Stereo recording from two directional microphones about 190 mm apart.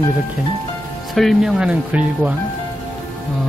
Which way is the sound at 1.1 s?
Centre (ahead or behind).